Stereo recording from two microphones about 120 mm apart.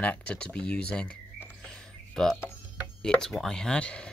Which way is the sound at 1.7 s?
5° left (ahead or behind).